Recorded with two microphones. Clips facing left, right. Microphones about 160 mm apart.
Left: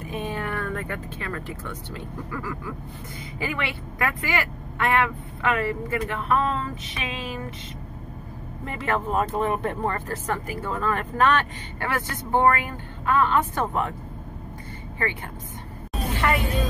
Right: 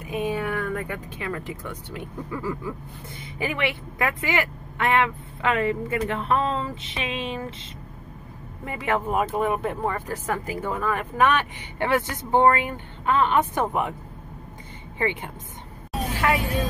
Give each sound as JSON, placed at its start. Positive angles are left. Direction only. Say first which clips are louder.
{"t": 0.0, "sound": "speech", "louder": "right 3 dB", "side_deg": -10}
{"t": 2.3, "sound": "speech", "louder": "right 4 dB", "side_deg": -25}
{"t": 8.6, "sound": "speech", "louder": "right 1 dB", "side_deg": -15}
{"t": 16.2, "sound": "speech", "louder": "right 1 dB", "side_deg": 0}